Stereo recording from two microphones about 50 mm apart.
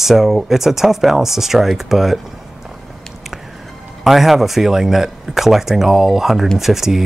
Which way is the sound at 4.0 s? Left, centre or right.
Centre.